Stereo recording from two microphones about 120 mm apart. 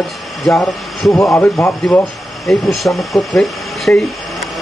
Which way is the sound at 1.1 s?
20° left (ahead or behind).